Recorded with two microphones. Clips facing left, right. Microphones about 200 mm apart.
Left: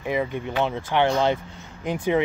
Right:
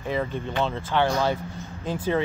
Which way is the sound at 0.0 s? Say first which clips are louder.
Left 2 dB; 10° left (ahead or behind).